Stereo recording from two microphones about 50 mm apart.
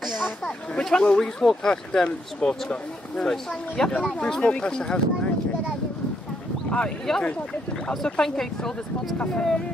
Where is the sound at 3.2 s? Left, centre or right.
Centre.